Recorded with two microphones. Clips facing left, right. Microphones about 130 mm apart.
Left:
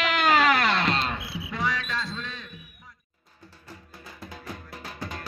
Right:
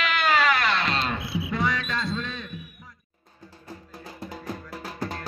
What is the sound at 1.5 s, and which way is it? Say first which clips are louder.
Cricket: right 1 dB; 60° right (ahead or behind).